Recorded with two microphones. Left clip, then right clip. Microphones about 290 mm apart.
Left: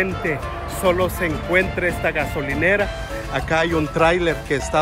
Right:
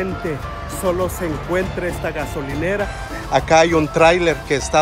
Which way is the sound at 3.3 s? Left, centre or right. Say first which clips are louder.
Right 7 dB; centre.